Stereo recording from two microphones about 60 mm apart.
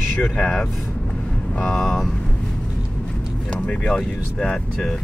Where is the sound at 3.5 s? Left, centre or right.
Centre.